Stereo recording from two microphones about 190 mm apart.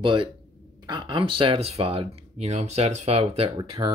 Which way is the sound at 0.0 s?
25° right (ahead or behind).